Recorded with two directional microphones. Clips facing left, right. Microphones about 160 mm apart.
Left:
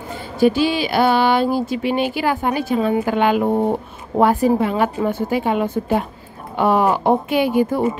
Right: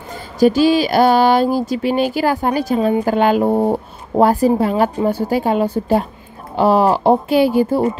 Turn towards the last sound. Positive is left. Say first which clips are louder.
# right 3 dB
turn(degrees=-30)  # may be behind; listen again after turning